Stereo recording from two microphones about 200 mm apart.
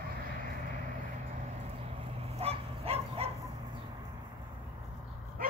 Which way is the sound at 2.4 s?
30° right (ahead or behind).